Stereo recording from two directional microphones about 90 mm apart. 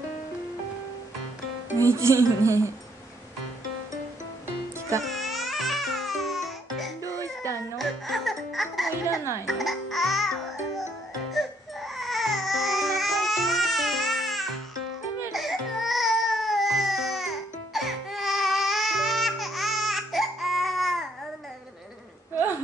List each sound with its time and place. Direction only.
1.8 s speech: 35° right (ahead or behind)
5.0 s music: centre (ahead or behind)
7.0 s music: 40° right (ahead or behind)
7.7 s music: centre (ahead or behind)
11.3 s baby cry: centre (ahead or behind)
22.3 s a sound: 25° right (ahead or behind)